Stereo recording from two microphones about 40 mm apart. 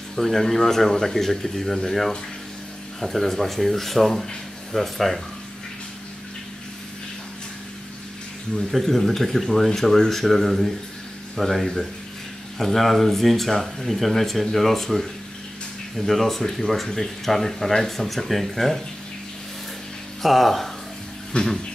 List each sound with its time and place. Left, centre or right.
0.1 s speech: centre
8.5 s speech: centre
16.1 s speech: centre
20.2 s speech: centre
21.3 s a sound: left